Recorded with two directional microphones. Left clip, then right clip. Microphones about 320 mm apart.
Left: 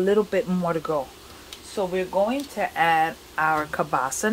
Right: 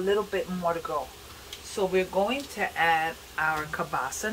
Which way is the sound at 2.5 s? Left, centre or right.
Left.